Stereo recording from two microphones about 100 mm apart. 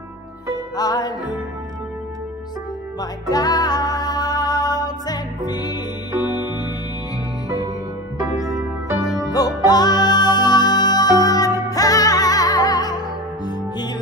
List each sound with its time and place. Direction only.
0.7 s music: 40° left (ahead or behind)
3.0 s music: 40° left (ahead or behind)
9.7 s music: 40° left (ahead or behind)